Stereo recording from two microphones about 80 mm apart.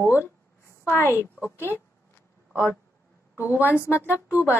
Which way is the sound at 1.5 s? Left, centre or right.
Right.